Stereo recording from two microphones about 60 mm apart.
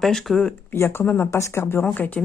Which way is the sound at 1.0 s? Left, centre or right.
Left.